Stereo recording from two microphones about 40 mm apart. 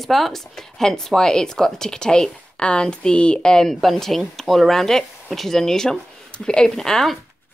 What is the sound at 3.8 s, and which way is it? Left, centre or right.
A woman's voice, centre.